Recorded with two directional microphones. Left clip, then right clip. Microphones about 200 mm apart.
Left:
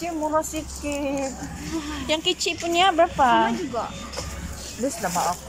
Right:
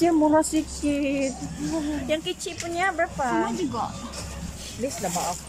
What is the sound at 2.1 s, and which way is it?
Speech, 5° right (ahead or behind).